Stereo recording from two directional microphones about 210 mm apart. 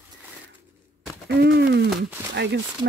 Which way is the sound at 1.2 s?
50° right (ahead or behind).